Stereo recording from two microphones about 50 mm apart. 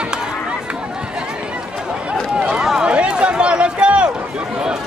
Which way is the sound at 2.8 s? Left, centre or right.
Right.